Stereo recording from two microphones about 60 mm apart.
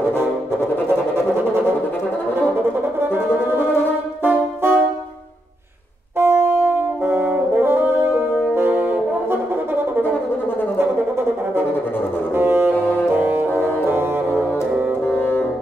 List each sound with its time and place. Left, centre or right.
4.2 s brass instrument: right
6.1 s brass instrument: right
12.4 s music: right
15.1 s music: left